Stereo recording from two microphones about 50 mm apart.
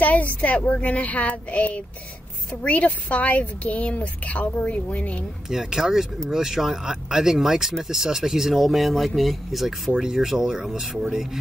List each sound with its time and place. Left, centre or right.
0.0 s a woman's voice: left
5.5 s speech: centre